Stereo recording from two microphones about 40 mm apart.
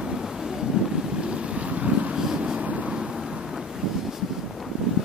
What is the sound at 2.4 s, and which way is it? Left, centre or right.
Vehicle, right.